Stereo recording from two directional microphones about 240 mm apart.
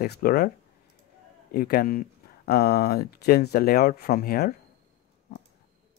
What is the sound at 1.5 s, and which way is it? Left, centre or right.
Speech, left.